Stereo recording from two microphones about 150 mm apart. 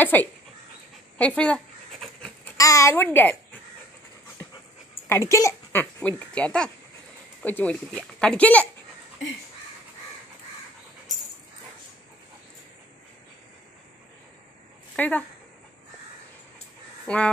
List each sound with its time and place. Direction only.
0.0 s speech: 10° left (ahead or behind)
1.1 s dog: 10° left (ahead or behind)
2.5 s speech: 20° left (ahead or behind)
5.0 s speech: 15° left (ahead or behind)
15.0 s speech: 10° left (ahead or behind)
17.0 s speech: 5° left (ahead or behind)